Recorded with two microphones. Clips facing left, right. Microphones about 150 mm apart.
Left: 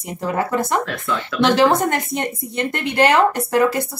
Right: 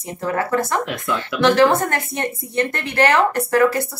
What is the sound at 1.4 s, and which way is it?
Speech, 15° left (ahead or behind).